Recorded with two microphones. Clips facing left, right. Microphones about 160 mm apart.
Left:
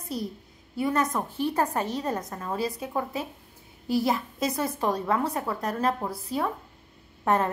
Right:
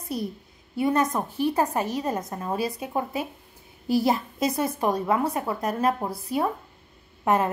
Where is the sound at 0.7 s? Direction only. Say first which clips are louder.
Right 3 dB; 20° right (ahead or behind).